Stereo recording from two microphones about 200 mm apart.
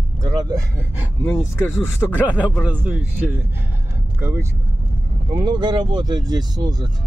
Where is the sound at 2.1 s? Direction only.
10° right (ahead or behind).